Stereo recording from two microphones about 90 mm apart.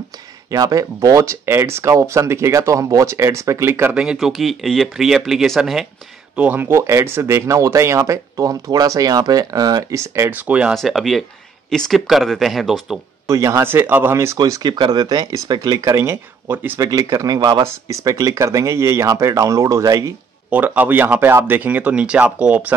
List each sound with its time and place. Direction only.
0.5 s speech: 40° right (ahead or behind)
1.3 s speech: 30° right (ahead or behind)
3.9 s speech: 10° right (ahead or behind)
6.3 s speech: 15° right (ahead or behind)
10.3 s speech: 15° right (ahead or behind)
10.7 s speech: centre (ahead or behind)
13.3 s speech: 35° right (ahead or behind)
14.4 s speech: 45° right (ahead or behind); by 16.8 s 20° right (ahead or behind)
16.8 s speech: 40° right (ahead or behind)
17.6 s speech: 35° right (ahead or behind)
20.4 s speech: 20° right (ahead or behind)